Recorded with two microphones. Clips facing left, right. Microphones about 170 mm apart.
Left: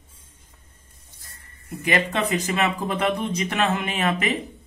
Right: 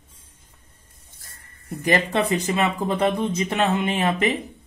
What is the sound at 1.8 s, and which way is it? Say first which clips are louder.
Speech: right 2 dB; 35° right (ahead or behind).